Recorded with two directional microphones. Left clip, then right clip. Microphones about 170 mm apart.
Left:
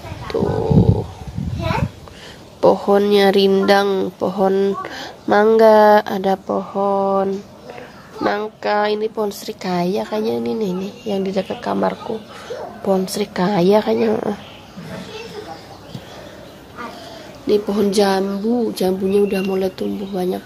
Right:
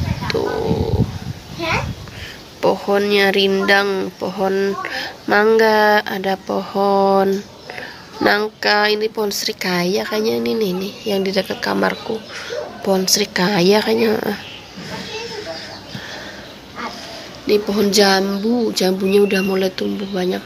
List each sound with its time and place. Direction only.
0.3 s speech: 20° left (ahead or behind)
2.6 s speech: 25° left (ahead or behind)
6.4 s speech: centre (ahead or behind)
17.5 s speech: 20° left (ahead or behind)